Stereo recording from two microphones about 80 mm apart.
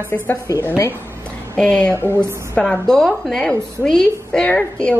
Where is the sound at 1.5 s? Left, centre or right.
Centre.